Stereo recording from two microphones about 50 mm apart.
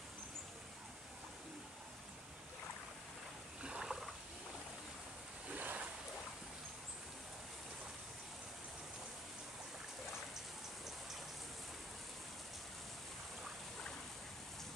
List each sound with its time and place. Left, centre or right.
3.6 s boat: centre
5.5 s boat: right